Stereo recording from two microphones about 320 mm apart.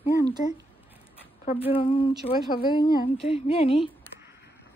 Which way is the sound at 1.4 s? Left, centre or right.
Centre.